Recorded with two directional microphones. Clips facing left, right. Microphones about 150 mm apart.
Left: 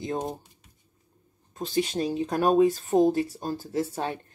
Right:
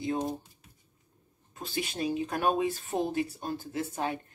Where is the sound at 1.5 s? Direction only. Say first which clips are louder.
Left 8 dB; 40° left (ahead or behind).